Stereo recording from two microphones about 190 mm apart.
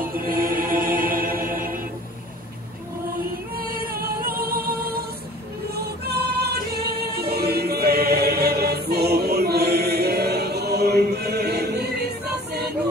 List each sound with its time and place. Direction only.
0.0 s mantra: 50° right (ahead or behind)
3.6 s music: 50° right (ahead or behind)